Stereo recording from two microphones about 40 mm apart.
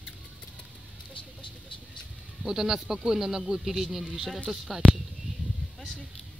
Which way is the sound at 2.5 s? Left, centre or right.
Centre.